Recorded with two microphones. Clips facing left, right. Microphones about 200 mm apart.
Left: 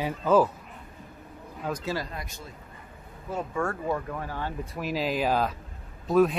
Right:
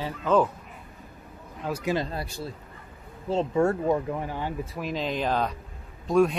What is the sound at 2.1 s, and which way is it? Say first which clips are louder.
Speech: right 6 dB; 30° right (ahead or behind).